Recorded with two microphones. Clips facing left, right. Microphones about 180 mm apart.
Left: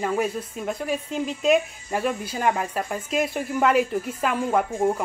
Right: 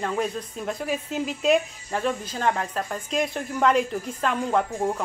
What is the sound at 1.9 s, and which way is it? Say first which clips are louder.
Speech: left 1 dB; 10° left (ahead or behind).